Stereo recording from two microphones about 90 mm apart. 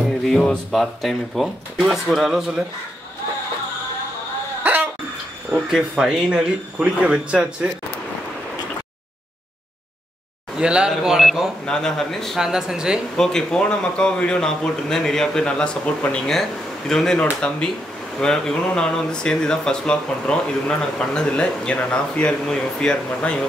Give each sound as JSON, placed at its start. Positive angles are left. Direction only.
{"t": 0.2, "sound": "speech", "side_deg": 5}
{"t": 4.6, "sound": "cough", "side_deg": -20}
{"t": 5.5, "sound": "speech", "side_deg": -5}
{"t": 10.6, "sound": "speech", "side_deg": -10}
{"t": 11.6, "sound": "speech", "side_deg": 10}
{"t": 13.1, "sound": "speech", "side_deg": 5}